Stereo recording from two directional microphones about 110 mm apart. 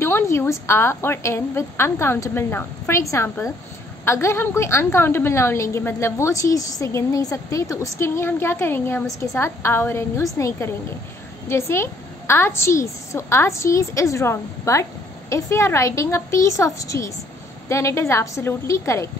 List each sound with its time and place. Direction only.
0.0 s a woman's voice: 25° left (ahead or behind)